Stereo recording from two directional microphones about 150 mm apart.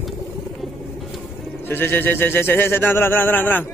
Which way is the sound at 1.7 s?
15° left (ahead or behind).